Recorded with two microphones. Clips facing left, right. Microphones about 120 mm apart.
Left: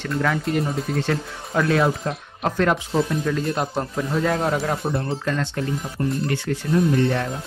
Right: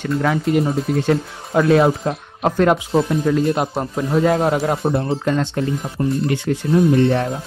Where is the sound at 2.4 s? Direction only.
15° right (ahead or behind).